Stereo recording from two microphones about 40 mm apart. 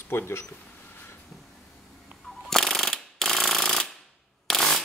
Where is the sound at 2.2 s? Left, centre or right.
Centre.